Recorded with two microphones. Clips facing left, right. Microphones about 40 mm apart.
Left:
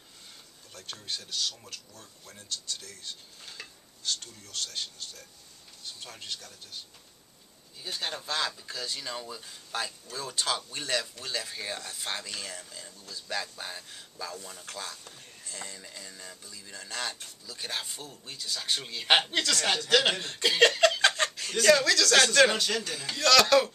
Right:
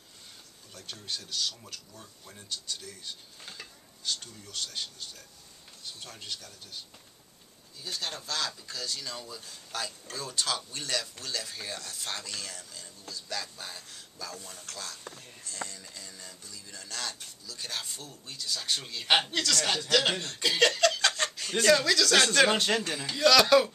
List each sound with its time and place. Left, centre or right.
0.7 s speech: centre
7.8 s speech: centre
22.8 s speech: centre
23.1 s speech: centre